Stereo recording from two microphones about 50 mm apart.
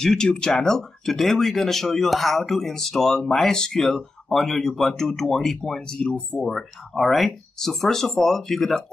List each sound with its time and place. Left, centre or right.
0.0 s speech: centre
6.4 s speech: centre